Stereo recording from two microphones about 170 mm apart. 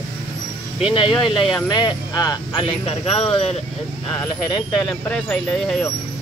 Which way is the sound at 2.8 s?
35° left (ahead or behind).